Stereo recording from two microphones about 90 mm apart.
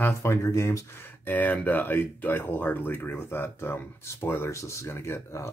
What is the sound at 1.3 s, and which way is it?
Speech, 20° left (ahead or behind).